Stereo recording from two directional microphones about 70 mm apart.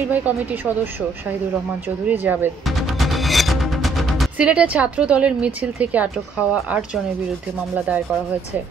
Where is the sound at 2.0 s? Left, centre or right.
Right.